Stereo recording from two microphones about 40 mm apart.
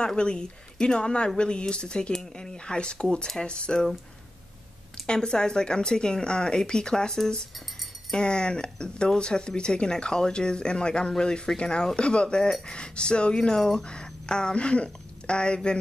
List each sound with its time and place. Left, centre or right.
0.0 s speech: left
2.5 s speech: left
5.0 s speech: centre
8.2 s speech: left
13.6 s speech: centre
13.8 s speech: left